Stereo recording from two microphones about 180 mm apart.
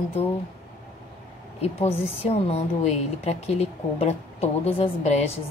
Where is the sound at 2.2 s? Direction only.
35° left (ahead or behind).